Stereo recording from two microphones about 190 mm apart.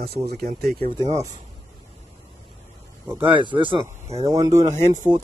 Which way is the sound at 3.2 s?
25° right (ahead or behind).